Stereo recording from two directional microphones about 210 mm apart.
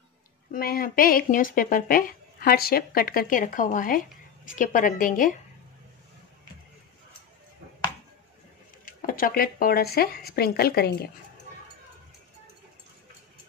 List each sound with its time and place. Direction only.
0.5 s a woman's voice: 45° left (ahead or behind)
8.8 s speech: 40° left (ahead or behind)